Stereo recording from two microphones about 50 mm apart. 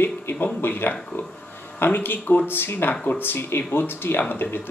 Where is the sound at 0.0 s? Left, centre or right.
Left.